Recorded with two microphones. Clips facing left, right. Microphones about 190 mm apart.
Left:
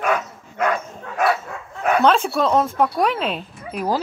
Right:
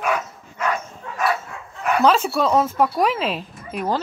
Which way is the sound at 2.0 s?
5° right (ahead or behind).